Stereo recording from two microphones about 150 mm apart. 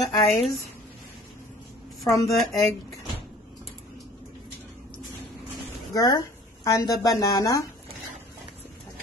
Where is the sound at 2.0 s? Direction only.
20° left (ahead or behind).